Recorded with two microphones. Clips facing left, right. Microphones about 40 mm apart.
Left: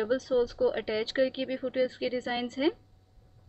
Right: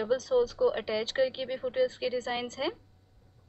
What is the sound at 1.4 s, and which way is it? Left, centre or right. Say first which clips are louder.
Speech: left 1 dB; centre.